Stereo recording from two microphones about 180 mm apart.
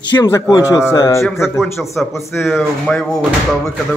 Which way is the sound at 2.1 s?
15° left (ahead or behind).